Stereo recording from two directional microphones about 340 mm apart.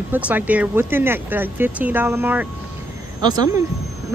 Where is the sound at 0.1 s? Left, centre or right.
Centre.